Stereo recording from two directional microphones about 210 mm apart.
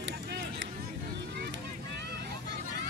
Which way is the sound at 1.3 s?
50° right (ahead or behind).